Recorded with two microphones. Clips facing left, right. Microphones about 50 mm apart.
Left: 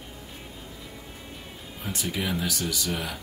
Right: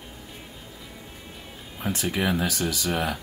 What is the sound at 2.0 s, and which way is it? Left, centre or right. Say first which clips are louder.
Speech: right 4 dB; right.